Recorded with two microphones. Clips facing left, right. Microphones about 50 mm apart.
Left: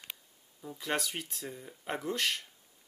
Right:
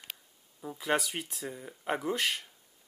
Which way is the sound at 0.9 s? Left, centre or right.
Centre.